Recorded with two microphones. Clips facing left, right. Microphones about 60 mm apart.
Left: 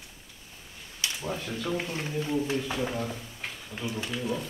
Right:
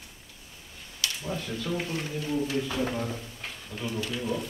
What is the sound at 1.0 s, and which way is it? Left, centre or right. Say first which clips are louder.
Speech: even; centre.